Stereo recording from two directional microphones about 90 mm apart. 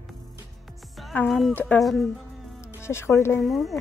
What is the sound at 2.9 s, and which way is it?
Speech, 30° left (ahead or behind).